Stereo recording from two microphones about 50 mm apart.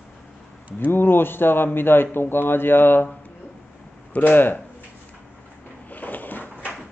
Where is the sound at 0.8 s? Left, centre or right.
Left.